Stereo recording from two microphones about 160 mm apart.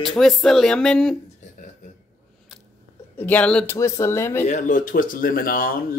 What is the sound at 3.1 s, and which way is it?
Speech, 10° left (ahead or behind).